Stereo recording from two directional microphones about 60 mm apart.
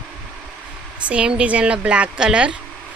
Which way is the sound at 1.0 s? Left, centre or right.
Centre.